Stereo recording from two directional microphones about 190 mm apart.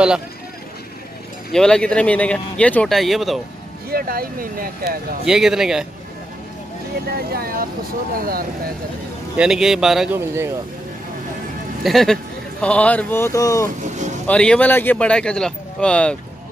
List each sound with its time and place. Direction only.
1.5 s speech: 5° left (ahead or behind)
3.9 s speech: 50° right (ahead or behind)
5.2 s speech: 5° right (ahead or behind)
7.1 s speech: 55° right (ahead or behind)
9.4 s speech: 5° right (ahead or behind)
10.1 s speech: 15° right (ahead or behind)
11.8 s speech: centre (ahead or behind); by 13.7 s 15° left (ahead or behind)
13.8 s speech: 40° right (ahead or behind)
14.2 s speech: 5° left (ahead or behind)